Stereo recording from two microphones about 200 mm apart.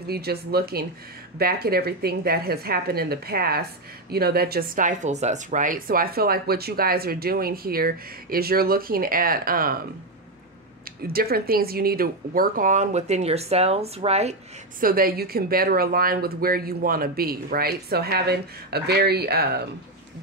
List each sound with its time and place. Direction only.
0.0 s speech: 50° right (ahead or behind)
11.1 s speech: 50° right (ahead or behind); by 14.3 s 30° right (ahead or behind)
14.8 s speech: 45° right (ahead or behind)